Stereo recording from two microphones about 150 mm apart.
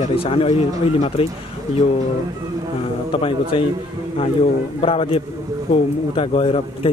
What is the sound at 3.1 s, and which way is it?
Speech, 35° left (ahead or behind).